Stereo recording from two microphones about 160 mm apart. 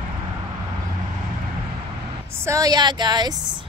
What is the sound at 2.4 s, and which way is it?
Speech, 20° right (ahead or behind).